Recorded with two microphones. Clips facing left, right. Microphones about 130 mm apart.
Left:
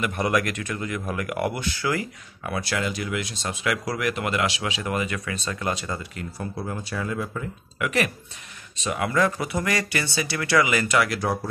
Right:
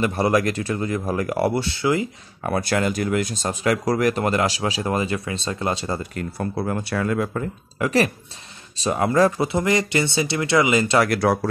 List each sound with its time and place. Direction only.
0.0 s speech: 30° right (ahead or behind)
2.4 s speech: 45° right (ahead or behind); by 5.9 s 30° right (ahead or behind)
6.1 s speech: 60° right (ahead or behind)
7.8 s speech: 35° right (ahead or behind)
11.1 s speech: 75° right (ahead or behind)